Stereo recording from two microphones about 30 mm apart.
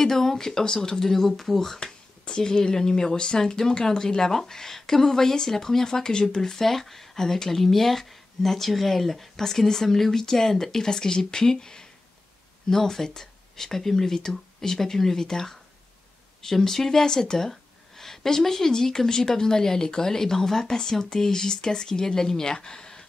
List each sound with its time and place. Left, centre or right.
0.0 s speech: centre
1.8 s speech: left
6.6 s speech: centre
9.4 s speech: centre
17.1 s a sound: centre
18.7 s speech: centre